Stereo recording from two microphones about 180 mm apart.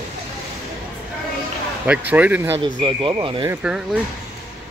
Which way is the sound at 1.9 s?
10° right (ahead or behind).